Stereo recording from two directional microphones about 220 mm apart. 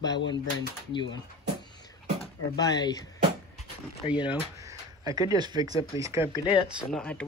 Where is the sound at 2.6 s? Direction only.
20° left (ahead or behind).